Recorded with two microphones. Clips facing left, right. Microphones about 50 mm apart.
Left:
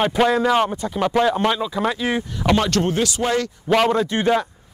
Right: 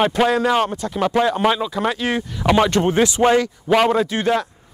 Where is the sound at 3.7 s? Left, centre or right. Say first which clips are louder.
Right 1 dB; centre.